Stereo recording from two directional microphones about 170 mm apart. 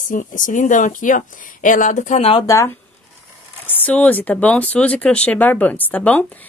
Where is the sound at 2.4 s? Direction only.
20° left (ahead or behind).